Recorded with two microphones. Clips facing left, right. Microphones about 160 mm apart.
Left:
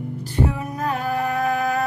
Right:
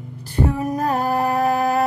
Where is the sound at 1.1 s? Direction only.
35° right (ahead or behind).